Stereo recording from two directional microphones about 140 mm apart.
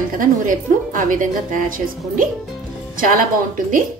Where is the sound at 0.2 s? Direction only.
75° right (ahead or behind).